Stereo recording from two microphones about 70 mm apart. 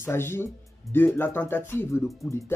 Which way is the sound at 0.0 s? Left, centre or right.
Left.